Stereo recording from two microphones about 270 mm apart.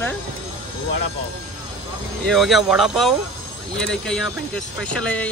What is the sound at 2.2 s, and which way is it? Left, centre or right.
Speech, centre.